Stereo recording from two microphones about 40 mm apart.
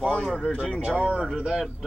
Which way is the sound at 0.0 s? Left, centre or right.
Left.